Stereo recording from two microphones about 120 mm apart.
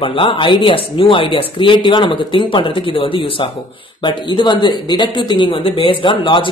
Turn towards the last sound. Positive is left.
turn(degrees=45)  # may be behind; listen again after turning